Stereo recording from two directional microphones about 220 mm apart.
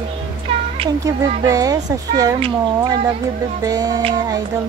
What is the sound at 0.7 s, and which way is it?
Speech, 15° right (ahead or behind).